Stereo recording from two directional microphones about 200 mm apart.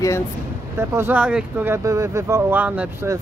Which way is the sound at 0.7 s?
10° right (ahead or behind).